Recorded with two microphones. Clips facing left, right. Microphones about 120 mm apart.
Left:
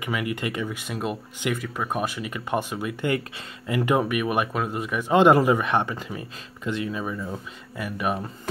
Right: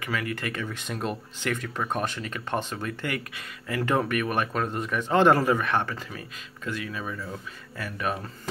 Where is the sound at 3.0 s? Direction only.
25° left (ahead or behind).